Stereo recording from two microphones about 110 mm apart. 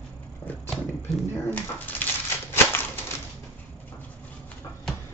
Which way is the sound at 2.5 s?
20° left (ahead or behind).